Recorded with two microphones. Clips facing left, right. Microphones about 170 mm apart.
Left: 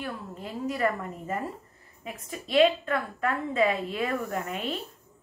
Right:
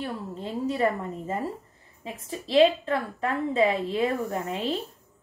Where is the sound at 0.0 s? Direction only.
25° right (ahead or behind).